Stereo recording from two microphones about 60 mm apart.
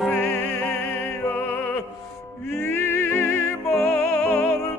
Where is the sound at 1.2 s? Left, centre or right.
Left.